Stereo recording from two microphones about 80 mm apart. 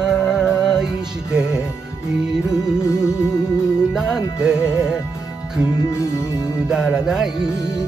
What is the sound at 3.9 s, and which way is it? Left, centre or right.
Music, centre.